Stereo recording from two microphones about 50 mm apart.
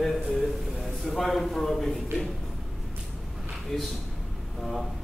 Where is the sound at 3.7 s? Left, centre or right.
Centre.